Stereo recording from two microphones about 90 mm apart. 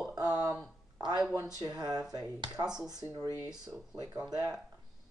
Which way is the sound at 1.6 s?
50° right (ahead or behind).